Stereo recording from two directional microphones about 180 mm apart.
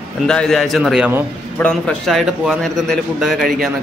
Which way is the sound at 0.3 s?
5° left (ahead or behind).